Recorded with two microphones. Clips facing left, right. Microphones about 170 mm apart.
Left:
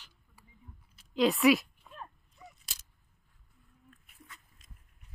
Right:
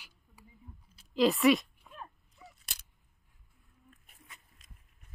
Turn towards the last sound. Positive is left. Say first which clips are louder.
# left 3 dB
turn(degrees=-25)  # may be behind; listen again after turning